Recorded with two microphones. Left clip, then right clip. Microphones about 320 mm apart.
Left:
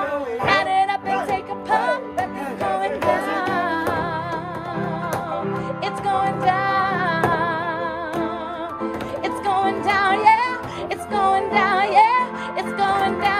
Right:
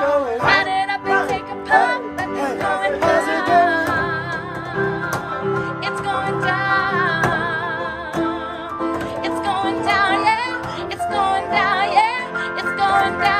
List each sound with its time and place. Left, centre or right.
0.5 s music: centre
6.0 s music: centre
9.2 s music: centre